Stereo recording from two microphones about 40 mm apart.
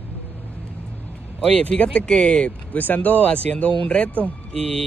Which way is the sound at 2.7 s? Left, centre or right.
Left.